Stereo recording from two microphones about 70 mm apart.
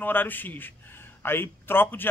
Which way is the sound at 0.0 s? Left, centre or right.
Left.